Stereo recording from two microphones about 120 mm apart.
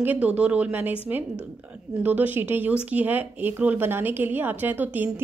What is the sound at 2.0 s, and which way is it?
A woman's voice, 15° right (ahead or behind).